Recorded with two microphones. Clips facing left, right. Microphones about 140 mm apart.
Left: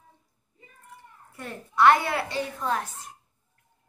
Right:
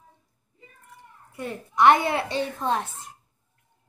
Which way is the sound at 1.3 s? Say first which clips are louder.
Right 2 dB; 15° right (ahead or behind).